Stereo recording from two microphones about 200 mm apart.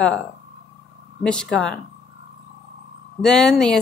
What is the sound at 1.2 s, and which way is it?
Speech, 5° left (ahead or behind).